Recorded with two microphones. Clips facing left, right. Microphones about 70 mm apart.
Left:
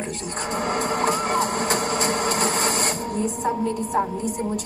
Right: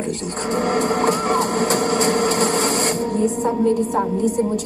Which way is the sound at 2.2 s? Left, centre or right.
Centre.